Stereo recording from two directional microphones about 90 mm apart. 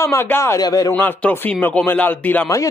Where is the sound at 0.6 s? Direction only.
45° left (ahead or behind).